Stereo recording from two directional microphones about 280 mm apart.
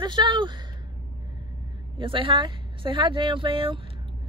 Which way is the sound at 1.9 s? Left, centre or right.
Centre.